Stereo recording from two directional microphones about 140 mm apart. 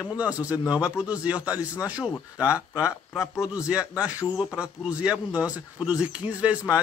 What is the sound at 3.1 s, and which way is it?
Speech, 20° left (ahead or behind).